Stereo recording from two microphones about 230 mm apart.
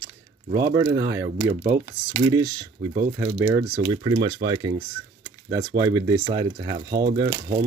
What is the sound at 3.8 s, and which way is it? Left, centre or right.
Speech, right.